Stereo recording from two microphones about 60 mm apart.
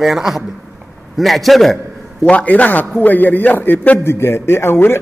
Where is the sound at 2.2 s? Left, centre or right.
Left.